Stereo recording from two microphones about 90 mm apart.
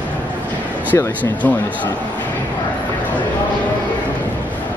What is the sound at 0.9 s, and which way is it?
Speech, 30° left (ahead or behind).